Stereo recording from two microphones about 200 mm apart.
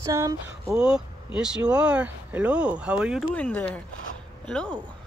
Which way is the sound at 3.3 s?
10° left (ahead or behind).